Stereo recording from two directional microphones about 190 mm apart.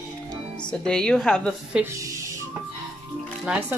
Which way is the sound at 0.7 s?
5° left (ahead or behind).